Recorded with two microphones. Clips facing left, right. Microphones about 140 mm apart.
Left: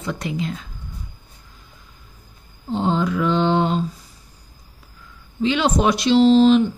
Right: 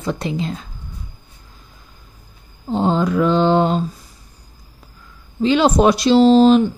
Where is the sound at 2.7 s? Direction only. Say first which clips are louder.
Right 3 dB; 40° right (ahead or behind).